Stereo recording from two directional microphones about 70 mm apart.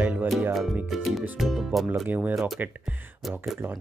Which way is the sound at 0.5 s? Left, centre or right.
Centre.